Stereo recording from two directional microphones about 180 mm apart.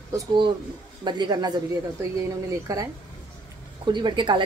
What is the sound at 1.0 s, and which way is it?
Speech, 25° right (ahead or behind).